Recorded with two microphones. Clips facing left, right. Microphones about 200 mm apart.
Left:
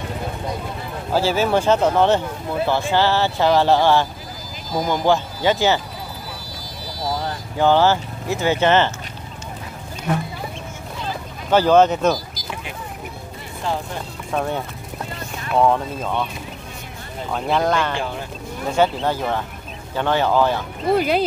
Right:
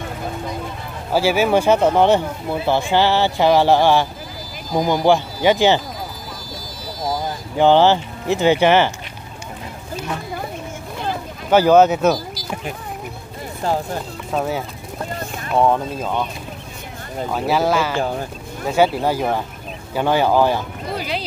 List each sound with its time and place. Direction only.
1.1 s speech: 10° right (ahead or behind)
7.5 s speech: 20° right (ahead or behind)
11.5 s speech: 10° right (ahead or behind)
13.7 s speech: 40° right (ahead or behind)
14.3 s speech: 5° right (ahead or behind)
17.3 s speech: 5° right (ahead or behind)
20.9 s speech: 50° left (ahead or behind)